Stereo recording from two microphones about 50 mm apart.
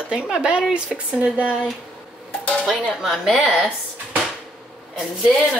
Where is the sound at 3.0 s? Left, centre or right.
Centre.